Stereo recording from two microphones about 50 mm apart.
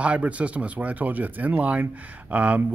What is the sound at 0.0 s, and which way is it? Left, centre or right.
Speech, right.